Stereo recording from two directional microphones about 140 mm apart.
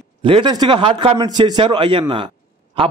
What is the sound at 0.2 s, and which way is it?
A man's voice, 35° right (ahead or behind).